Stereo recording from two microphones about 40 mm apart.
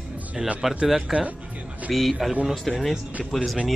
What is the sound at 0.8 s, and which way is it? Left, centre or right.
Speech, right.